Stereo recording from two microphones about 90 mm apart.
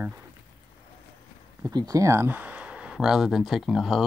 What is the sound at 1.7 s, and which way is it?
Speech, 45° right (ahead or behind).